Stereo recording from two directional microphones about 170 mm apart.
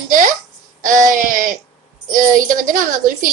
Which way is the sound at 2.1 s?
50° right (ahead or behind).